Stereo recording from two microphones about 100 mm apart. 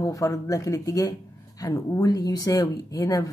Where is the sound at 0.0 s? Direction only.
35° left (ahead or behind).